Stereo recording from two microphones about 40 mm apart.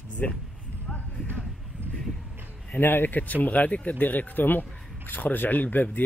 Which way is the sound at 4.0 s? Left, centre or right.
Left.